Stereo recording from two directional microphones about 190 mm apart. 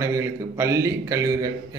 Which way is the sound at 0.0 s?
15° right (ahead or behind).